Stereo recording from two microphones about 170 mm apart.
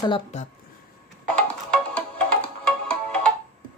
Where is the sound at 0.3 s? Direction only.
40° left (ahead or behind).